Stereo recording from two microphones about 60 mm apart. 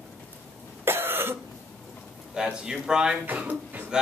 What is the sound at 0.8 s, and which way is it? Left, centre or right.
Cough, right.